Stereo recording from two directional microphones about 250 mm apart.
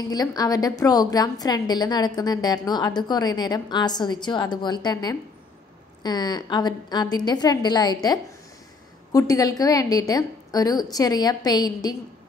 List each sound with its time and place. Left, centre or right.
0.1 s a woman's voice: centre